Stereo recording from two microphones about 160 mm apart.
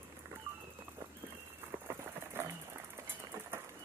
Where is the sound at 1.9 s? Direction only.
15° right (ahead or behind).